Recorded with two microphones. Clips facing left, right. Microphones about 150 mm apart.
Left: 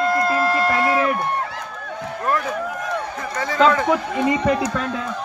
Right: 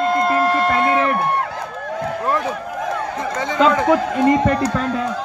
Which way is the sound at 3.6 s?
Centre (ahead or behind).